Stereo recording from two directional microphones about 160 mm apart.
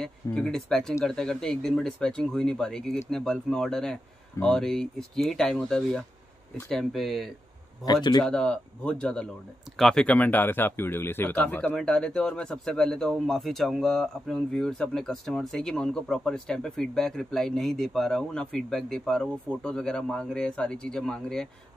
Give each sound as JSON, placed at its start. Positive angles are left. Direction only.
{"t": 0.0, "sound": "speech", "side_deg": 5}
{"t": 7.8, "sound": "a man's voice", "side_deg": 25}
{"t": 8.3, "sound": "speech", "side_deg": 5}